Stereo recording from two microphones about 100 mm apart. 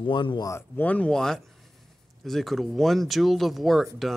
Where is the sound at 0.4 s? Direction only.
30° left (ahead or behind).